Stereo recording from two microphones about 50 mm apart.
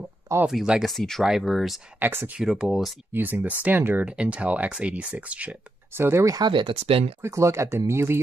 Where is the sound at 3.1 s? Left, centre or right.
Right.